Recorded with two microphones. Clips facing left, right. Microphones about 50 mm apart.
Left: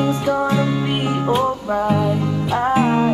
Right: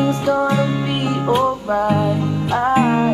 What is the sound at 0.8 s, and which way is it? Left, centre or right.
Music, centre.